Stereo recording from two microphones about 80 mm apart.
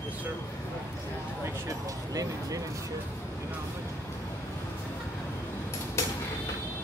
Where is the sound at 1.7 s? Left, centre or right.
Right.